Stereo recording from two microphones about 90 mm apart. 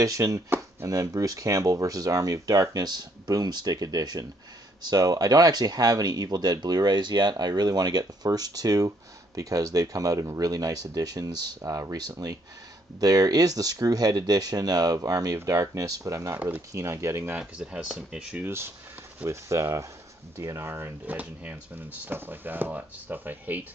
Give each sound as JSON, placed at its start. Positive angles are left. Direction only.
{"t": 0.0, "sound": "speech", "side_deg": -40}
{"t": 16.3, "sound": "speech", "side_deg": -15}
{"t": 16.7, "sound": "speech", "side_deg": -30}
{"t": 17.4, "sound": "speech", "side_deg": -10}
{"t": 19.2, "sound": "speech", "side_deg": -35}